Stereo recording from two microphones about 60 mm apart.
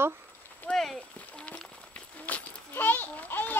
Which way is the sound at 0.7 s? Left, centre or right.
Centre.